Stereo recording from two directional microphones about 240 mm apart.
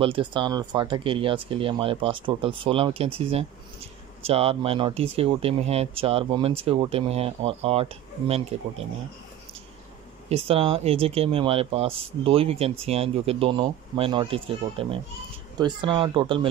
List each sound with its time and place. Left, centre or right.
0.0 s speech: right
10.3 s speech: right